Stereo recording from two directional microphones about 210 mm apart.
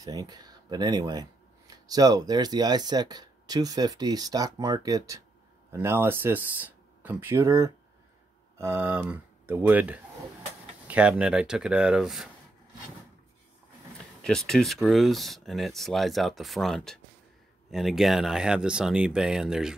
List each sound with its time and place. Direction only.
0.0 s speech: 20° right (ahead or behind); by 12.3 s 5° right (ahead or behind)
14.2 s speech: centre (ahead or behind)